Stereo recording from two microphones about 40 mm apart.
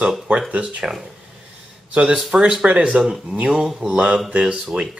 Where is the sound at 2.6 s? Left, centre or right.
Right.